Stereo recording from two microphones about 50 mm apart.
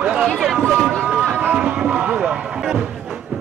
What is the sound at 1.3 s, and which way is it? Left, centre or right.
Run, right.